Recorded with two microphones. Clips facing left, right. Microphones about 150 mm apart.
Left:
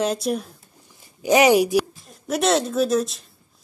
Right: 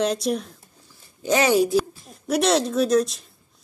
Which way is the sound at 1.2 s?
15° left (ahead or behind).